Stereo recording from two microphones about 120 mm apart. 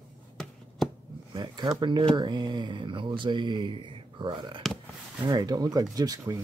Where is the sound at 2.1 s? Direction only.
40° right (ahead or behind).